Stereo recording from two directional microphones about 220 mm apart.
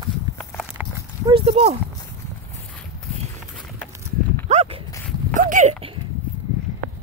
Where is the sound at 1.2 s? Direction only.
25° right (ahead or behind).